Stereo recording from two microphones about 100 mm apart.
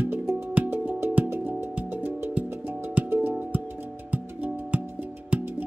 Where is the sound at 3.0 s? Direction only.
20° right (ahead or behind).